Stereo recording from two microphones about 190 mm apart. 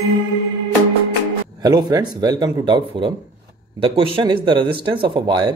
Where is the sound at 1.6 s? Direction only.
20° right (ahead or behind).